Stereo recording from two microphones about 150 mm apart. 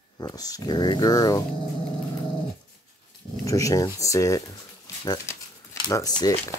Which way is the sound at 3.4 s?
20° left (ahead or behind).